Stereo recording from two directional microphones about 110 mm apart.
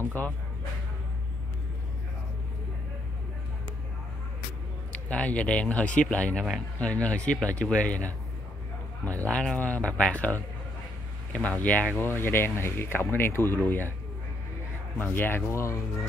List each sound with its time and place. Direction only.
0.0 s speech: 15° left (ahead or behind)
4.9 s speech: 10° left (ahead or behind)
9.3 s speech: 10° left (ahead or behind)
15.0 s speech: 20° left (ahead or behind)